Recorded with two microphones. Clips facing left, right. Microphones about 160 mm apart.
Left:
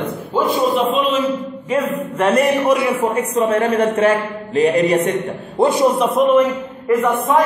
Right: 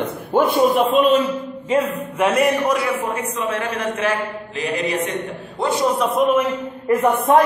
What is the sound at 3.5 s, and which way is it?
Speech, 35° left (ahead or behind).